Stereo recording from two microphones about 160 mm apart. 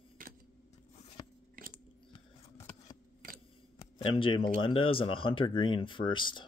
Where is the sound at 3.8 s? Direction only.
35° left (ahead or behind).